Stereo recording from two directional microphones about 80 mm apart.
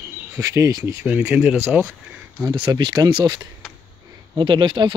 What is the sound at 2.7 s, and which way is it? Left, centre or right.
Speech, right.